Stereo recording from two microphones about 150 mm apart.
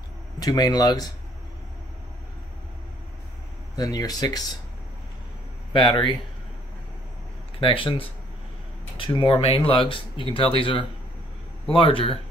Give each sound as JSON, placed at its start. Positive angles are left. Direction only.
{"t": 0.4, "sound": "speech", "side_deg": 25}
{"t": 3.7, "sound": "speech", "side_deg": 25}
{"t": 5.7, "sound": "speech", "side_deg": 35}
{"t": 7.6, "sound": "speech", "side_deg": 35}